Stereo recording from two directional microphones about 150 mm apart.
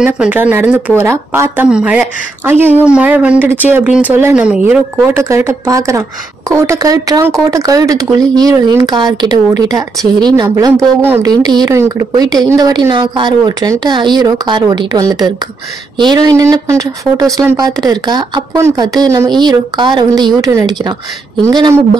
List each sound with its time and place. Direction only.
0.0 s speech: 10° right (ahead or behind); by 21.7 s 30° right (ahead or behind)